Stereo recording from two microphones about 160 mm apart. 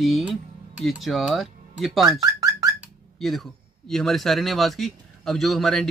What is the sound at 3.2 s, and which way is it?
Speech, centre (ahead or behind).